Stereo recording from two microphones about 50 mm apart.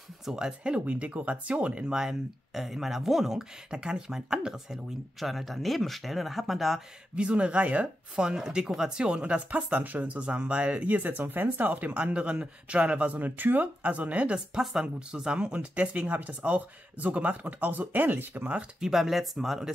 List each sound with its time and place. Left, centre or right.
0.2 s speech: centre
0.5 s speech: right
2.0 s speech: centre
5.2 s speech: centre
7.2 s speech: right
8.2 s speech: centre
10.9 s speech: right
11.9 s speech: right
14.6 s speech: centre; by 18.5 s right
18.8 s speech: centre